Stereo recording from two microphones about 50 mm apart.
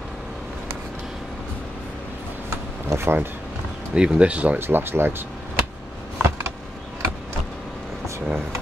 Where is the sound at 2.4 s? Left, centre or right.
Right.